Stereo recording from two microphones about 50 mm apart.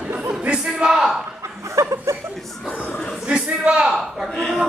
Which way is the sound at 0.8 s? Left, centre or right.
Right.